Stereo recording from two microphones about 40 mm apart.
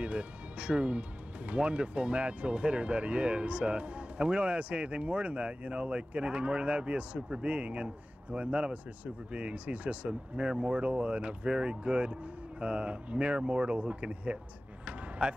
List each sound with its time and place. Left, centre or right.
0.0 s speech: right
14.9 s basketball bounce: right